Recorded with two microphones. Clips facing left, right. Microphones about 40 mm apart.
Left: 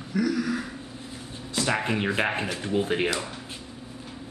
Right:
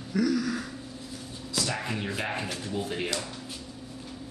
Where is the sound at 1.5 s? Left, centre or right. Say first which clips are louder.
Left 5 dB; left.